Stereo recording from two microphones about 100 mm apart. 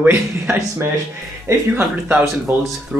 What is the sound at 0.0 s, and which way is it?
Speech, 25° right (ahead or behind).